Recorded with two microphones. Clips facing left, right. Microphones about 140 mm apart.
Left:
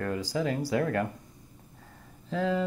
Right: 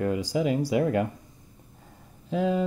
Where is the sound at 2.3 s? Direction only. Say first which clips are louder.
Right 3 dB; 15° right (ahead or behind).